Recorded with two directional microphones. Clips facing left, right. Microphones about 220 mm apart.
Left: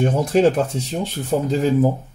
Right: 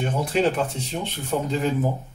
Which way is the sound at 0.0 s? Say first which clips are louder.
Left 6 dB; 45° left (ahead or behind).